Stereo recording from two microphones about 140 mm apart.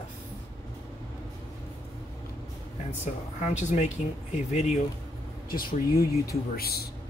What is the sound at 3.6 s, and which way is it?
Speech, 60° left (ahead or behind).